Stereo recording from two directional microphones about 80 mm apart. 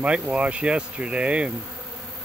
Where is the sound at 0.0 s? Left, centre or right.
Centre.